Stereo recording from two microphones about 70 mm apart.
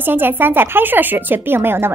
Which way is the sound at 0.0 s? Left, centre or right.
Right.